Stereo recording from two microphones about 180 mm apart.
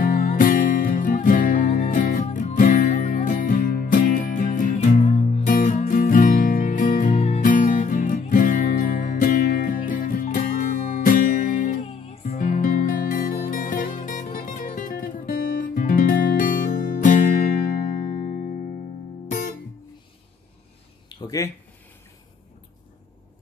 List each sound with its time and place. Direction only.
0.0 s music: 50° left (ahead or behind)
11.8 s music: 35° left (ahead or behind)
12.3 s music: 45° left (ahead or behind)
21.1 s a sound: 20° left (ahead or behind)